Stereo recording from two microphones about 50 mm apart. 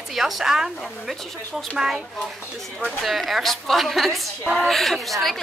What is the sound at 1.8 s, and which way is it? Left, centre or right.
A woman's voice, centre.